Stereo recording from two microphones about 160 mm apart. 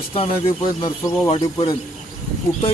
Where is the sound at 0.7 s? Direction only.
30° left (ahead or behind).